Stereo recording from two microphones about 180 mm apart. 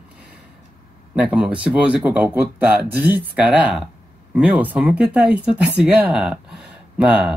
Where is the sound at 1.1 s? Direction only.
5° right (ahead or behind).